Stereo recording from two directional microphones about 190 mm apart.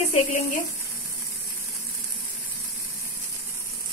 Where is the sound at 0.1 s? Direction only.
40° left (ahead or behind).